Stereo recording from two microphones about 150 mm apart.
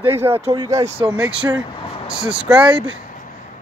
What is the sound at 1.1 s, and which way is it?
Speech, 10° right (ahead or behind).